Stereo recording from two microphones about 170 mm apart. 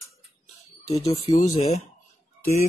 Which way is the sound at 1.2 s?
40° left (ahead or behind).